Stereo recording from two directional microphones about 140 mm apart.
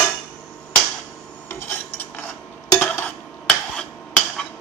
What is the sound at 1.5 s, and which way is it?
Cutlery, 15° left (ahead or behind).